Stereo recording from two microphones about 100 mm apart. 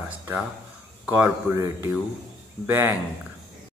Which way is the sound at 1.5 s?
30° right (ahead or behind).